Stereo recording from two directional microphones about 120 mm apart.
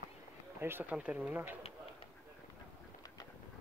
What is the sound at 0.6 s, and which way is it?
Speech, 20° right (ahead or behind).